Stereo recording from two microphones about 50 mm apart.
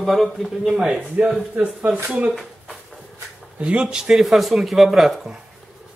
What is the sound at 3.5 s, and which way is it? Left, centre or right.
Speech, right.